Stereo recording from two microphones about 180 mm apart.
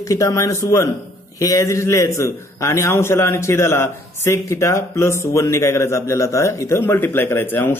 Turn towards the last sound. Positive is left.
turn(degrees=10)  # may be behind; listen again after turning